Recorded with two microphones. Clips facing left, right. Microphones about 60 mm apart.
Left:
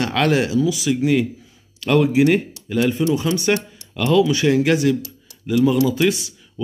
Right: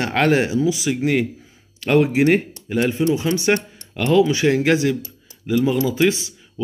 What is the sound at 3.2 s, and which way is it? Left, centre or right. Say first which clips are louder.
Speech: even; right.